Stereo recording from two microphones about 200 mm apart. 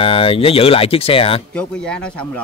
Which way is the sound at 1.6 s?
5° left (ahead or behind).